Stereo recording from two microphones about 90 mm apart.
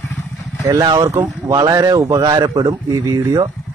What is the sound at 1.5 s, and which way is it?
Speech, 45° right (ahead or behind).